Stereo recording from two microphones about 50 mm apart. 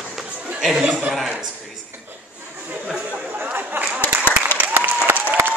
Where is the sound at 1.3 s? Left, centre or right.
Centre.